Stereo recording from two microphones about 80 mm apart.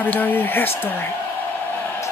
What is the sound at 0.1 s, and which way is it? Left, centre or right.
Speech, left.